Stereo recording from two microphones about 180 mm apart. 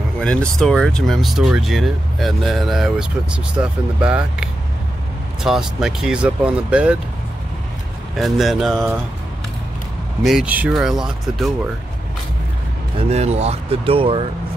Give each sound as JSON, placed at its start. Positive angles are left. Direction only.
{"t": 0.2, "sound": "speech", "side_deg": 5}
{"t": 8.2, "sound": "speech", "side_deg": 0}
{"t": 10.2, "sound": "speech", "side_deg": -5}
{"t": 13.1, "sound": "speech", "side_deg": -35}